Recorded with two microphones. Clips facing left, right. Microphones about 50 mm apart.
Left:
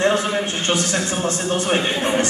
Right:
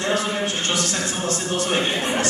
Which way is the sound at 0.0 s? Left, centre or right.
Left.